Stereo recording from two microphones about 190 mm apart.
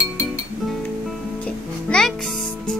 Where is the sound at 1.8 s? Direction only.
5° left (ahead or behind).